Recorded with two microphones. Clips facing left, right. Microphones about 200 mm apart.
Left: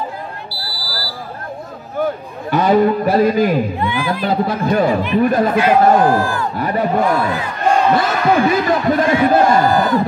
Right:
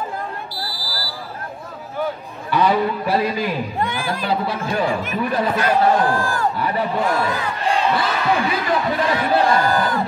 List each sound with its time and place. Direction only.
0.6 s buzzer: 20° right (ahead or behind)
2.5 s speech: 45° left (ahead or behind)
3.8 s speech: 45° right (ahead or behind)
4.2 s speech: 45° left (ahead or behind)